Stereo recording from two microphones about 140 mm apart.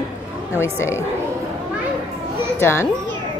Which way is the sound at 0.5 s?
20° left (ahead or behind).